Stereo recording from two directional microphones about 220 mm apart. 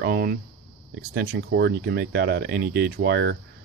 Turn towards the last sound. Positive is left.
turn(degrees=-50)  # may be behind; listen again after turning